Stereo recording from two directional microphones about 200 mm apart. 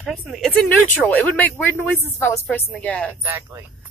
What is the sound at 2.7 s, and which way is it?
Speech, 5° left (ahead or behind).